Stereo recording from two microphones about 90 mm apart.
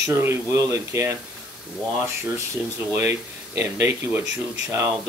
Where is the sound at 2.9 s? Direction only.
30° right (ahead or behind).